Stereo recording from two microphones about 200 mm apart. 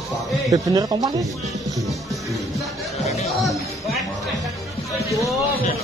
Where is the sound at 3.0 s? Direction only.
35° left (ahead or behind).